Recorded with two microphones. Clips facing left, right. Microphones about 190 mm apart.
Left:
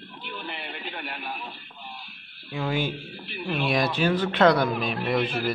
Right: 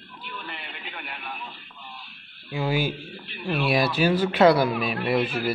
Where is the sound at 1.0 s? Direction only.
Centre (ahead or behind).